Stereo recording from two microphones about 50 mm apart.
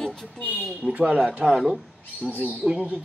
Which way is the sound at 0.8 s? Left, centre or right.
Right.